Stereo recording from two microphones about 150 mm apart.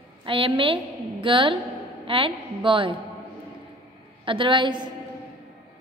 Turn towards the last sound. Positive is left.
turn(degrees=-30)  # may be behind; listen again after turning